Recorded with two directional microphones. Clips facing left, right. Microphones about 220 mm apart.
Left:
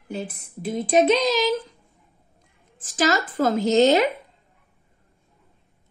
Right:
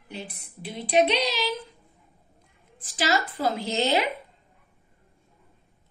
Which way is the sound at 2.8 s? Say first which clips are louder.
Left 4 dB; 45° left (ahead or behind).